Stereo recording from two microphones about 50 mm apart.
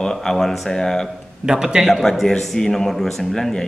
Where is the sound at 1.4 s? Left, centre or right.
Centre.